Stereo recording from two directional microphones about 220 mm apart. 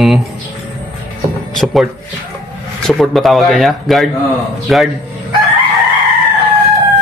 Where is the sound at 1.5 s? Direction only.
Centre (ahead or behind).